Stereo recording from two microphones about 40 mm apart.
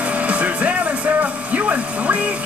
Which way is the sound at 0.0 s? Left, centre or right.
Right.